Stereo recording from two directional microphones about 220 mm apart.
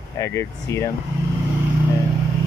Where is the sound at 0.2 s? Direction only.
15° left (ahead or behind).